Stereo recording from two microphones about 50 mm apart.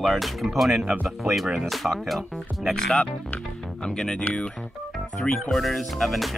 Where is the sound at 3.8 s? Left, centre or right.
Centre.